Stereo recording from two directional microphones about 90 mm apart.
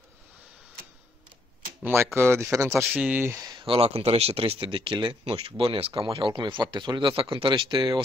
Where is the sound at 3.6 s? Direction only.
90° right.